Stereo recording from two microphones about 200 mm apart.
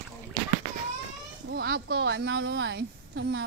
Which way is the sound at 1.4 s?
55° right (ahead or behind).